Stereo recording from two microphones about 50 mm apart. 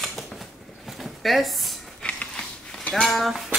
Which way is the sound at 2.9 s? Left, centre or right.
Centre.